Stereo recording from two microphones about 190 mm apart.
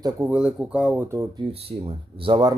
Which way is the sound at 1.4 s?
30° right (ahead or behind).